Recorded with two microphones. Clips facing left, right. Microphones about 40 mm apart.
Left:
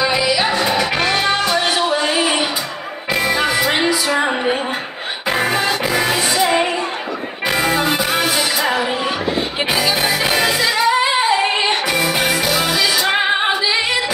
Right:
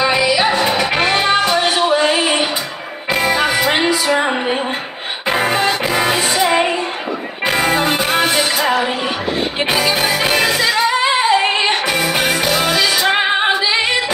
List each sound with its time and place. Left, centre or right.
0.0 s music: right
4.2 s music: centre
5.3 s music: right
7.4 s music: right
12.1 s music: right
12.7 s music: right